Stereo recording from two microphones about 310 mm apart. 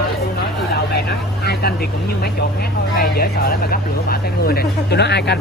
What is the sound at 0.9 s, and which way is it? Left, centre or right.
Speech, left.